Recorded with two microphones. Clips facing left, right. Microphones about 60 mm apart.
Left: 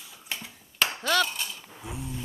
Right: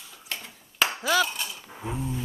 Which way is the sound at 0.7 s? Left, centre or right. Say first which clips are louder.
Right 2 dB; centre.